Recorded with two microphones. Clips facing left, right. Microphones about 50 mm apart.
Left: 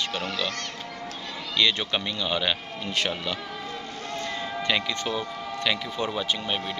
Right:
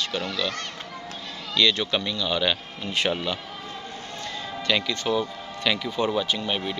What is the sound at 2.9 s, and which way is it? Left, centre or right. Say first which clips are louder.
Speech: right 3 dB; centre.